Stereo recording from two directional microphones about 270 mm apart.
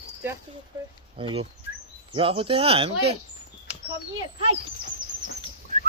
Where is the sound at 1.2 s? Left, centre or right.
Centre.